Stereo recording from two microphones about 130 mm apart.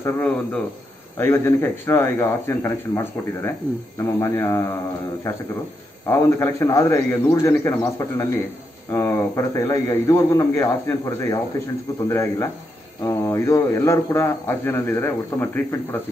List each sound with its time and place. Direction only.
0.0 s speech: 10° left (ahead or behind)
6.0 s speech: 25° left (ahead or behind)